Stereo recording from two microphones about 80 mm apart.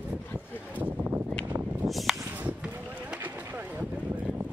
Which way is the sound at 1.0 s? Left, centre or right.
Right.